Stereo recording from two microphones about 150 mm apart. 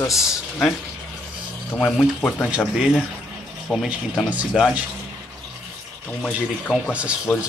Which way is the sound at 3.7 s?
Centre (ahead or behind).